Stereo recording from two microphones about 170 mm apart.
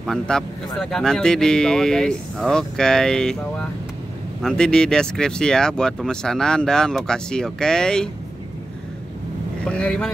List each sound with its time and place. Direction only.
0.0 s speech: 5° left (ahead or behind)
9.7 s speech: 5° left (ahead or behind)